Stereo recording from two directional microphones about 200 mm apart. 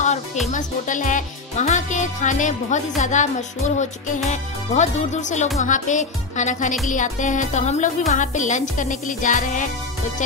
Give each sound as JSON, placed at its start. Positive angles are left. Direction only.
{"t": 0.5, "sound": "speech", "side_deg": 40}
{"t": 3.0, "sound": "music", "side_deg": 35}